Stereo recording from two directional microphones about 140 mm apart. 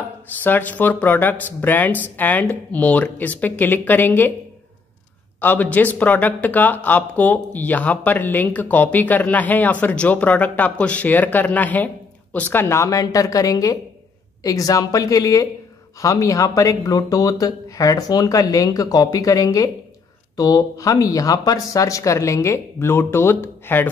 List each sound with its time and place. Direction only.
0.4 s speech: 15° left (ahead or behind)
5.4 s speech: 10° left (ahead or behind)